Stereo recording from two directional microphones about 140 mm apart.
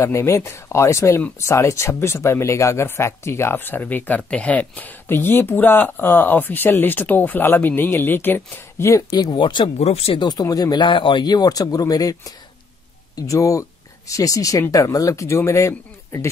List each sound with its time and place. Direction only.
0.0 s speech: 20° left (ahead or behind)
9.1 s speech: 30° left (ahead or behind)
9.8 s speech: 45° left (ahead or behind)
10.2 s speech: 25° left (ahead or behind)